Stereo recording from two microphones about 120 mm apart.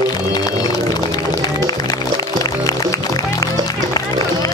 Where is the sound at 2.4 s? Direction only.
30° left (ahead or behind).